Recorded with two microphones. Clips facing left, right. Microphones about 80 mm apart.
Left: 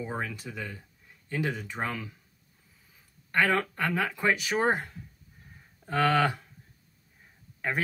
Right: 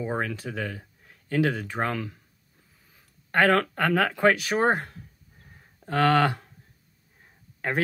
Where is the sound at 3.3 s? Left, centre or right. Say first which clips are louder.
Right 5 dB; right.